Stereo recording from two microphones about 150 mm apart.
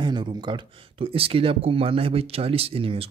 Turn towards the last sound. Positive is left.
turn(degrees=-40)  # may be behind; listen again after turning